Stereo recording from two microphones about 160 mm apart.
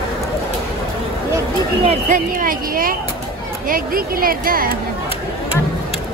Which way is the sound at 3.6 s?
65° right (ahead or behind).